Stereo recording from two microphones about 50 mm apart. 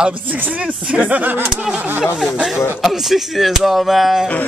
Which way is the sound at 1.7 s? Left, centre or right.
Right.